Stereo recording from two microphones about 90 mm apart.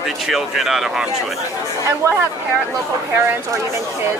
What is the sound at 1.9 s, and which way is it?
Speech, 35° right (ahead or behind).